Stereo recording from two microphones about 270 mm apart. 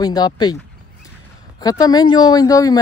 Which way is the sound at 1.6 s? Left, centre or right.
Centre.